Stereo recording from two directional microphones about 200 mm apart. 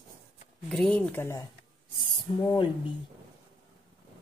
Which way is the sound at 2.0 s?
25° left (ahead or behind).